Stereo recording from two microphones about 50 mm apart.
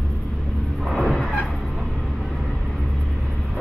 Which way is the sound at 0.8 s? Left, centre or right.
Centre.